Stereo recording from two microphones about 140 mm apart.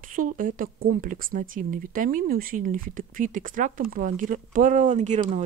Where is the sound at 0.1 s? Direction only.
75° right (ahead or behind).